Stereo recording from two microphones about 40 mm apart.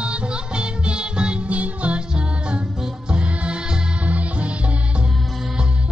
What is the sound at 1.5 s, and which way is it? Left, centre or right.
Music, right.